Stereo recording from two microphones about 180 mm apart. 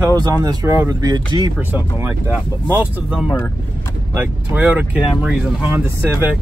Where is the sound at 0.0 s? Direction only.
20° right (ahead or behind).